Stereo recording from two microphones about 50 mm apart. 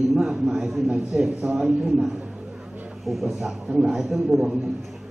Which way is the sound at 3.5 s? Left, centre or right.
Centre.